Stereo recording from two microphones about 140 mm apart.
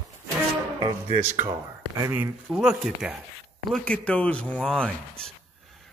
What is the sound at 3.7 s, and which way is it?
Speech, 10° left (ahead or behind).